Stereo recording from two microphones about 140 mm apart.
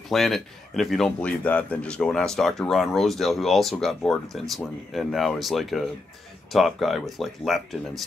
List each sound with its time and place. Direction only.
0.1 s a man's voice: centre (ahead or behind)